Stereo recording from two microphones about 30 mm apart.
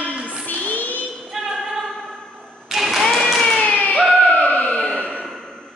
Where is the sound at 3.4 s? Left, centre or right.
Centre.